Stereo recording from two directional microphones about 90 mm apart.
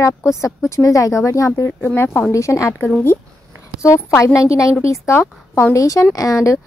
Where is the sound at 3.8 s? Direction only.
35° left (ahead or behind).